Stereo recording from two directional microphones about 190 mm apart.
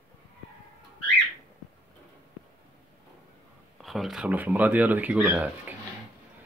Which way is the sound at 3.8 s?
Centre (ahead or behind).